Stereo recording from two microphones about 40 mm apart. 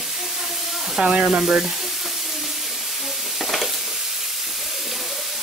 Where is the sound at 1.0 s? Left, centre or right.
Right.